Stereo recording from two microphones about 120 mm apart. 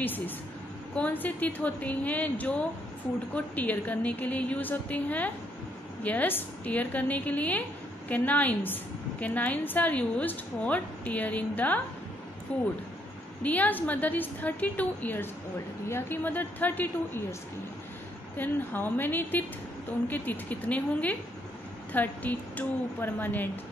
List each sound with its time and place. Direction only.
0.9 s a woman's voice: 15° left (ahead or behind)
18.4 s a woman's voice: 15° left (ahead or behind)